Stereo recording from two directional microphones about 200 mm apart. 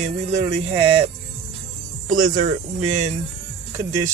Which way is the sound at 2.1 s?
40° right (ahead or behind).